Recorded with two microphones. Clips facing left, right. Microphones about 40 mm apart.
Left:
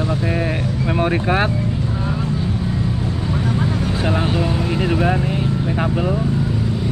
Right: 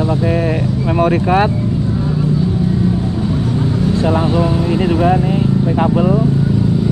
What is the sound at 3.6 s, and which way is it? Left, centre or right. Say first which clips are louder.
Speech: right 5 dB; centre.